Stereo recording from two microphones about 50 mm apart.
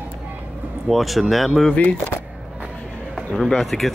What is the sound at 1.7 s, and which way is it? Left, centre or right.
Speech, left.